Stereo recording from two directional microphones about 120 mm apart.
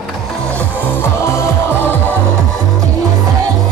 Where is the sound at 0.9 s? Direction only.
20° left (ahead or behind).